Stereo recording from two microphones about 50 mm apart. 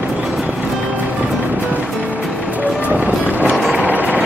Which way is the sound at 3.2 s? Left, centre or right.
Left.